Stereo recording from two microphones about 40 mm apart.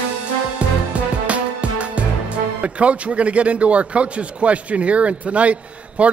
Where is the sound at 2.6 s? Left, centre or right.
Right.